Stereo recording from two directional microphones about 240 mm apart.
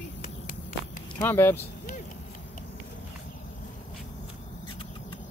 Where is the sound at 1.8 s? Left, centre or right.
Left.